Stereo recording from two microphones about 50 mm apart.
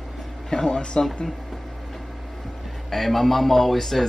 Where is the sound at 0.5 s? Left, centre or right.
Centre.